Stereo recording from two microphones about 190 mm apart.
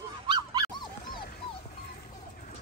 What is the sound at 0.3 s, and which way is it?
Dog, 25° right (ahead or behind).